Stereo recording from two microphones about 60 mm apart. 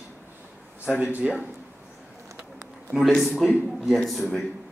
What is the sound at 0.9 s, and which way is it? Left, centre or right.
Speech, centre.